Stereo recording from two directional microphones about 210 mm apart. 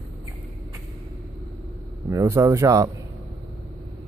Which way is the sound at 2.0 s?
15° right (ahead or behind).